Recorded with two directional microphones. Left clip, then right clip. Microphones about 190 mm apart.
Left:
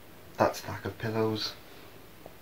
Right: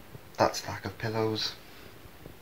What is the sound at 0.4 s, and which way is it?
Speech, 25° right (ahead or behind).